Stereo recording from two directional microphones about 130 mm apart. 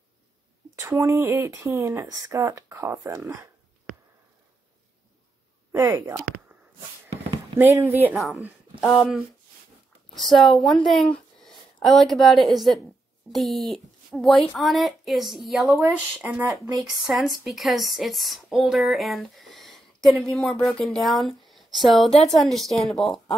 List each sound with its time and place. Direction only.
0.7 s speech: 20° right (ahead or behind)
5.7 s a sound: 30° right (ahead or behind)
7.5 s speech: 20° right (ahead or behind)
8.1 s a woman's voice: centre (ahead or behind)